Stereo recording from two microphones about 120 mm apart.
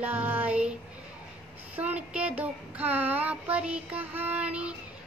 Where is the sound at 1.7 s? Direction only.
15° right (ahead or behind).